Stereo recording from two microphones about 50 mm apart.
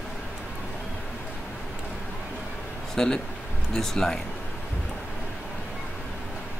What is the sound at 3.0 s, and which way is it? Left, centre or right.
Speech, centre.